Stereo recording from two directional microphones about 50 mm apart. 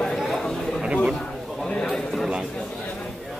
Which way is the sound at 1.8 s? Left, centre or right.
Centre.